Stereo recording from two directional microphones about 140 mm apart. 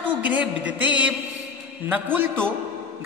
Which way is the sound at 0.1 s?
10° right (ahead or behind).